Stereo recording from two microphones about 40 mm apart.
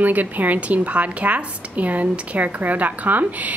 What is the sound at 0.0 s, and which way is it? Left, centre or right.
A woman's voice, right.